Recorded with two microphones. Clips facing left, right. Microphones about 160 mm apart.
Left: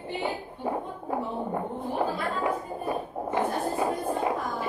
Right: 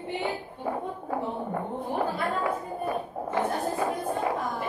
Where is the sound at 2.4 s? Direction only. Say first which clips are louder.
Even; 20° left (ahead or behind).